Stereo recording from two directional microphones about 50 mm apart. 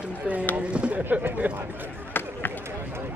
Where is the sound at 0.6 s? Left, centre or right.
Right.